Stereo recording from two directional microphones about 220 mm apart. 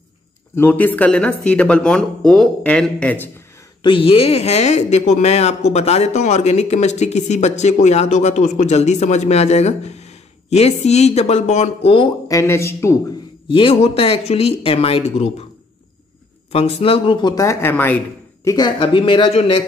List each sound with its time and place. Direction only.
0.6 s speech: 10° left (ahead or behind)
3.8 s speech: 25° left (ahead or behind)
13.5 s speech: 25° left (ahead or behind)
16.5 s speech: 25° left (ahead or behind)